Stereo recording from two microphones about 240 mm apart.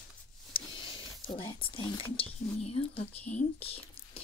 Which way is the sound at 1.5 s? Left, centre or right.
Centre.